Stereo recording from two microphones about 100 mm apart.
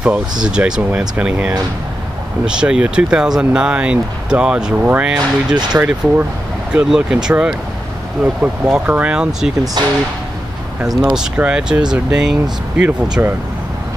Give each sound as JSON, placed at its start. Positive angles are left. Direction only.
{"t": 0.0, "sound": "speech", "side_deg": -10}
{"t": 9.8, "sound": "speech", "side_deg": -45}
{"t": 11.1, "sound": "speech", "side_deg": -10}